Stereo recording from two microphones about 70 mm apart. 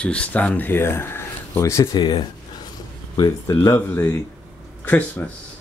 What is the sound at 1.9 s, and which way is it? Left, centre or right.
Speech, left.